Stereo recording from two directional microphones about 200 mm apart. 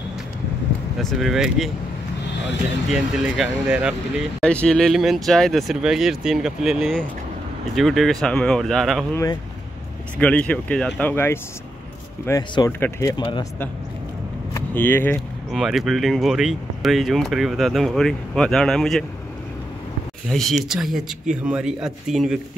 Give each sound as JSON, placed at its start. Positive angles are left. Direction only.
{"t": 0.9, "sound": "speech", "side_deg": 0}
{"t": 2.9, "sound": "speech", "side_deg": 0}
{"t": 9.1, "sound": "speech", "side_deg": 15}
{"t": 10.1, "sound": "speech", "side_deg": 5}
{"t": 20.2, "sound": "speech", "side_deg": 0}